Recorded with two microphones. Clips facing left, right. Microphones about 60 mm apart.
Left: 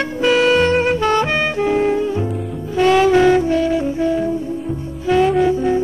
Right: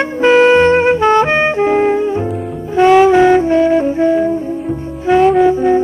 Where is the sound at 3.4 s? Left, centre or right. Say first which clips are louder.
Right 6 dB; right.